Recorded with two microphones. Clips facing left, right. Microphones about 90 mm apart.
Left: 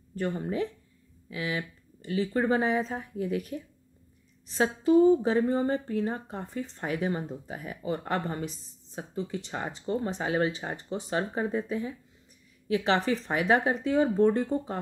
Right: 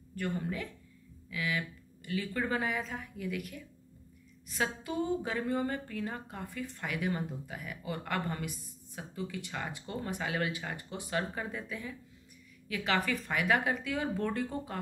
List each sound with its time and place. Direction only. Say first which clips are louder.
0.1 s a woman's voice: left 5 dB; 30° left (ahead or behind)